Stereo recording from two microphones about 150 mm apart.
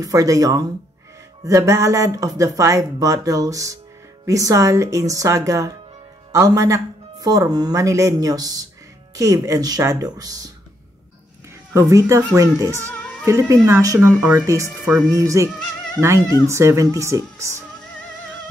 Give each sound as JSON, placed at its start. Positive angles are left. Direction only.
{"t": 0.0, "sound": "speech", "side_deg": -25}
{"t": 11.7, "sound": "speech", "side_deg": -20}
{"t": 12.7, "sound": "speech", "side_deg": 10}
{"t": 13.2, "sound": "speech", "side_deg": -20}